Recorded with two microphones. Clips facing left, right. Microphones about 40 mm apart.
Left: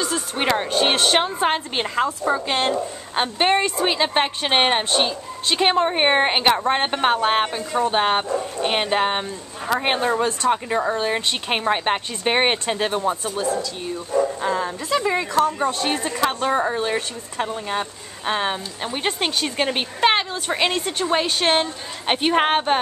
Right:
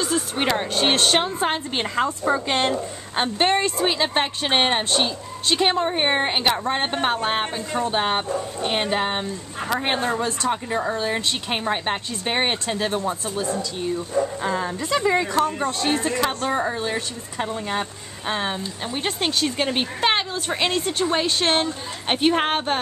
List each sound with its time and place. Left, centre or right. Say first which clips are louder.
0.0 s speech: right 1 dB; centre
0.5 s a woman's voice: left 2 dB; centre
3.3 s a man's voice: left 1 dB; centre
10.5 s speech: left 3 dB; centre
13.9 s a woman's voice: left 4 dB; centre
15.8 s speech: right 1 dB; left
16.5 s a woman's voice: left 3 dB; centre
18.2 s speech: left 2 dB; centre